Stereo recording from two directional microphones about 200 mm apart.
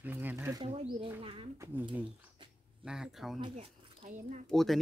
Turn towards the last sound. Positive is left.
turn(degrees=0)  # may be behind; listen again after turning